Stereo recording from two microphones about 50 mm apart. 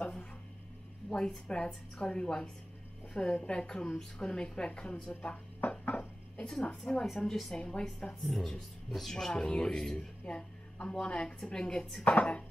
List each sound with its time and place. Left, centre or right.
1.1 s a woman's voice: centre; by 7.0 s left
7.2 s a woman's voice: centre
7.5 s a woman's voice: centre
8.2 s a woman's voice: centre; by 12.4 s left